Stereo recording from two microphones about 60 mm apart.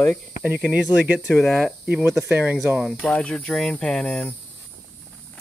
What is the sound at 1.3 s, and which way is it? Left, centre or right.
Speech, centre.